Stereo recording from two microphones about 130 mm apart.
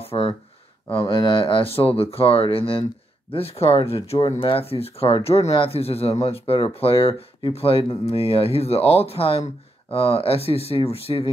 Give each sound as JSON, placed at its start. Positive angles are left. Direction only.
{"t": 0.0, "sound": "speech", "side_deg": 45}